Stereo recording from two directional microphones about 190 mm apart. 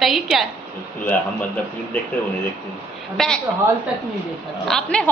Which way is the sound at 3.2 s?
Centre (ahead or behind).